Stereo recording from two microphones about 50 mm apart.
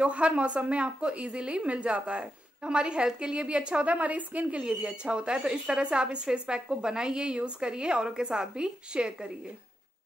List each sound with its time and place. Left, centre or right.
0.0 s a woman's voice: right